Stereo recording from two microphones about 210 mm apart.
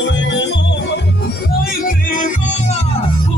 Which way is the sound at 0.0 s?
60° left (ahead or behind).